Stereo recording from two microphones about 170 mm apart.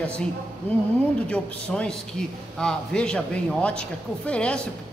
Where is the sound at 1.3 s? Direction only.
5° left (ahead or behind).